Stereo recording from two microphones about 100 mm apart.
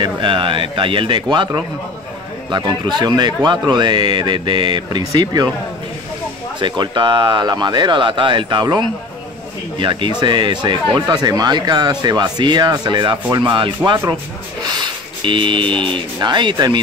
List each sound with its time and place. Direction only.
0.0 s speech: 60° right (ahead or behind); by 5.5 s 40° right (ahead or behind)
6.6 s speech: 50° right (ahead or behind)
9.8 s speech: 55° right (ahead or behind)
14.8 s a sound: 55° right (ahead or behind)
16.2 s speech: 50° right (ahead or behind)